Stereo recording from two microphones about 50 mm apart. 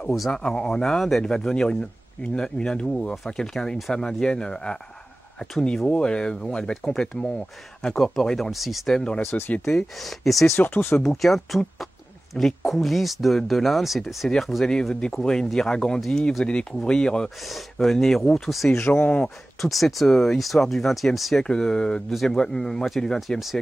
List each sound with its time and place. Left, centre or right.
0.3 s speech: centre
1.3 s speech: centre
5.9 s speech: centre
7.9 s speech: centre
8.9 s speech: centre
9.2 s speech: left
9.7 s speech: centre
10.6 s speech: left
11.0 s speech: centre
17.4 s speech: centre
18.8 s speech: left
19.6 s speech: centre
21.5 s speech: centre